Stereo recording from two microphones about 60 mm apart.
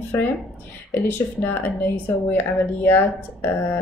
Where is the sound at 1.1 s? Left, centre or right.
Left.